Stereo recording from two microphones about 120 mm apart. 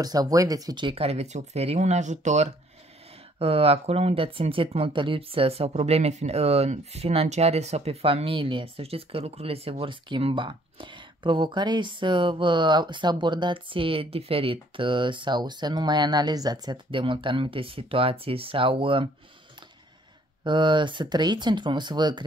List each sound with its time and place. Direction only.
0.0 s speech: 30° right (ahead or behind); by 2.5 s 75° right (ahead or behind)
3.3 s speech: 55° right (ahead or behind)
20.4 s speech: 40° right (ahead or behind)